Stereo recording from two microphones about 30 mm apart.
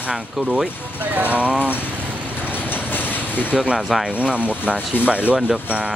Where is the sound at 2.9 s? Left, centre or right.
Left.